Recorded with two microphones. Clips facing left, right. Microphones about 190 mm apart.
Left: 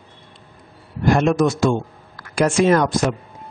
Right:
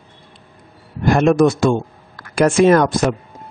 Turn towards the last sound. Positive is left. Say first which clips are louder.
# right 3 dB
turn(degrees=-60)  # may be behind; listen again after turning